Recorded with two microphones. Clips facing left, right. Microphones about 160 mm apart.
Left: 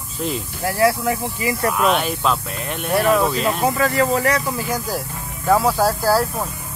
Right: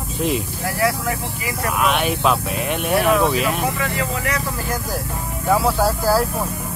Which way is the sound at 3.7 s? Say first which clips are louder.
Left 6 dB; 40° left (ahead or behind).